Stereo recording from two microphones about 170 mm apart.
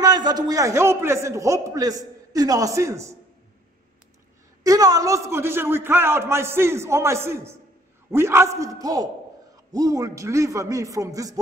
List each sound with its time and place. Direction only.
0.0 s a man's voice: 25° right (ahead or behind)
4.6 s a man's voice: 20° right (ahead or behind)